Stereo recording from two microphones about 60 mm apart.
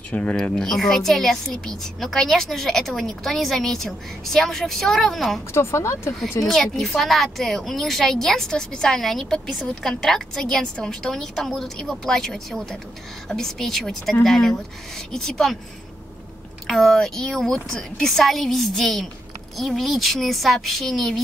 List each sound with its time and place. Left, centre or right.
0.1 s speech: left
0.5 s a woman's voice: centre
5.5 s speech: left
6.4 s a woman's voice: centre
16.6 s a woman's voice: centre